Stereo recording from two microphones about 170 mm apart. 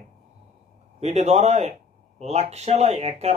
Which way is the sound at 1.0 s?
40° right (ahead or behind).